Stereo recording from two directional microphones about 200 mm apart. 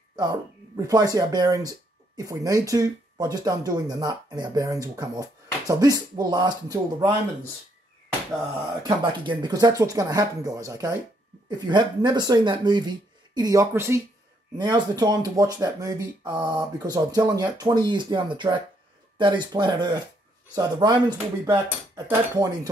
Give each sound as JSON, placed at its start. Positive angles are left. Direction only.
{"t": 0.1, "sound": "speech", "side_deg": -20}
{"t": 8.8, "sound": "speech", "side_deg": -25}